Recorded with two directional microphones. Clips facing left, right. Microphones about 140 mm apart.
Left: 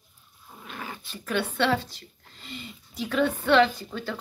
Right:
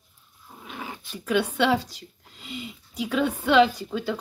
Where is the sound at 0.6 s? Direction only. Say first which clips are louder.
Right 1 dB; 10° right (ahead or behind).